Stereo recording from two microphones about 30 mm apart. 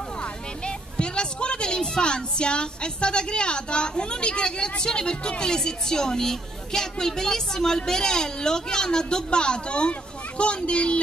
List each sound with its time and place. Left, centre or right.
0.2 s a woman's voice: left